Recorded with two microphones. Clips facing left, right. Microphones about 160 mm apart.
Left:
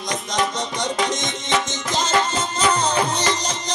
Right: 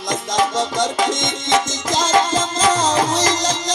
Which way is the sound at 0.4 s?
90° right.